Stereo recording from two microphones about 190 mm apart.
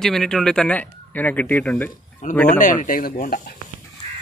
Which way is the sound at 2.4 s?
45° left (ahead or behind).